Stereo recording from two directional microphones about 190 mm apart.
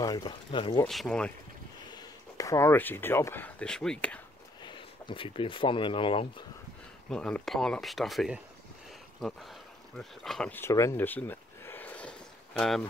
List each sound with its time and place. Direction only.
0.0 s speech: 20° left (ahead or behind)
0.8 s speech: centre (ahead or behind)
1.9 s speech: 20° left (ahead or behind)
4.6 s speech: 25° left (ahead or behind)
7.1 s speech: 5° left (ahead or behind)
9.2 s a sound: centre (ahead or behind)